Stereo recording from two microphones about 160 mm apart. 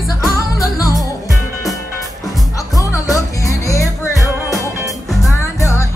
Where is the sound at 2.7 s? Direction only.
20° left (ahead or behind).